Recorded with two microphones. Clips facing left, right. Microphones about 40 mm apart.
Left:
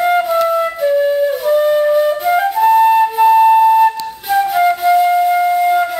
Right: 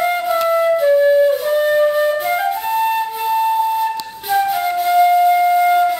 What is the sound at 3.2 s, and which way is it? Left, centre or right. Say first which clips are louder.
Flute: left 9 dB; centre.